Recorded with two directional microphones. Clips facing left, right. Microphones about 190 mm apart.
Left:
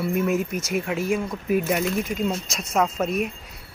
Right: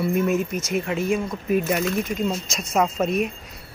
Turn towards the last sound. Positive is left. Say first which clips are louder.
# right 2 dB
turn(degrees=0)  # may be behind; listen again after turning